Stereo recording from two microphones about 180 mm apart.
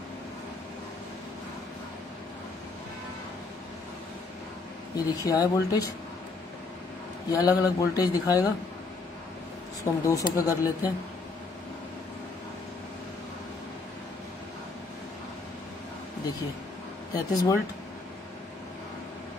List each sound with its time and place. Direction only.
4.9 s speech: 20° left (ahead or behind)
7.2 s speech: 20° left (ahead or behind)
10.0 s speech: 15° left (ahead or behind)
17.1 s speech: 20° left (ahead or behind)